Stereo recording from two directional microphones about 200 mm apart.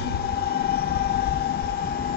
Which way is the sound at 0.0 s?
55° left (ahead or behind).